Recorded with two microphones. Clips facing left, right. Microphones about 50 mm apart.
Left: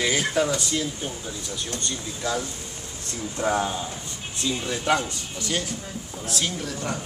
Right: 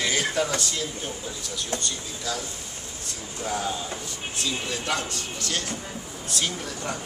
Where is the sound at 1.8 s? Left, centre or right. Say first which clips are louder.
Left 2 dB; left.